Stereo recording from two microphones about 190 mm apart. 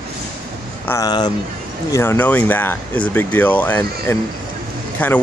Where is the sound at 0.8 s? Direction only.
20° left (ahead or behind).